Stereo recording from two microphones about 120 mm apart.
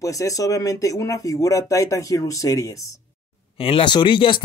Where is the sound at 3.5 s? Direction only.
50° left (ahead or behind).